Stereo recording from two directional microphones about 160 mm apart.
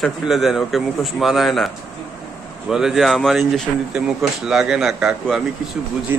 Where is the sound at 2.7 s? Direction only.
Centre (ahead or behind).